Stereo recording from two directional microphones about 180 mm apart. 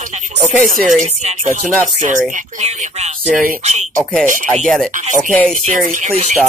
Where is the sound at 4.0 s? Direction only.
Centre (ahead or behind).